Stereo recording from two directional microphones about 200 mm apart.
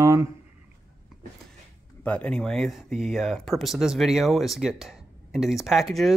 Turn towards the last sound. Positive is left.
turn(degrees=0)  # may be behind; listen again after turning